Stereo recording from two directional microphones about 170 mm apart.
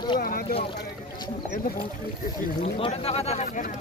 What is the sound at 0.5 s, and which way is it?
Speech, 35° left (ahead or behind).